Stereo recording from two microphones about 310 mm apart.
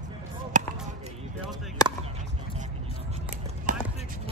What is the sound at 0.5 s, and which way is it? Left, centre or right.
Basketball bounce, right.